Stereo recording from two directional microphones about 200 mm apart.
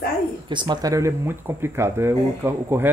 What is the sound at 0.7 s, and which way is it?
Speech, 15° right (ahead or behind).